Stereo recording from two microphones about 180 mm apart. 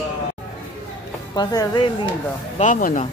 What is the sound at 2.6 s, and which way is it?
Speech, 50° left (ahead or behind).